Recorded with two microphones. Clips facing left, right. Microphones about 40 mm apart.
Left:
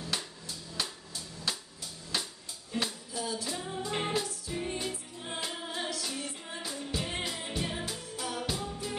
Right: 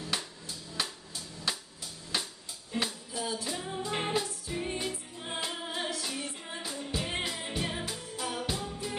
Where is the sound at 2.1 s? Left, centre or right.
Centre.